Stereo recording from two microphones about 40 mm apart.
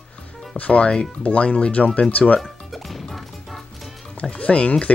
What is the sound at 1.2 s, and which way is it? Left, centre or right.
Speech, left.